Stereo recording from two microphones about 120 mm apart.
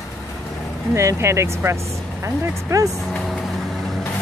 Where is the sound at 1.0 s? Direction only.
20° right (ahead or behind).